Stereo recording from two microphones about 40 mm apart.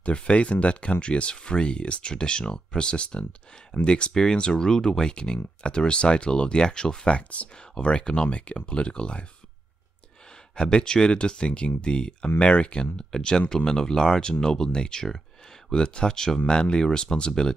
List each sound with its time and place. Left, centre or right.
0.0 s speech: left
10.5 s speech: left